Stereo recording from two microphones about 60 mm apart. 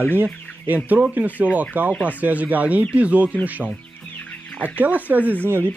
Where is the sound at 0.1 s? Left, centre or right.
Right.